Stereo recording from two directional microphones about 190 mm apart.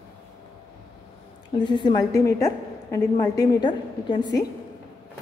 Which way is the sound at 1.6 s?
25° left (ahead or behind).